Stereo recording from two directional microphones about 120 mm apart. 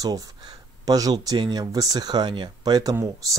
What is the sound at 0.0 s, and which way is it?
Speech, 30° right (ahead or behind).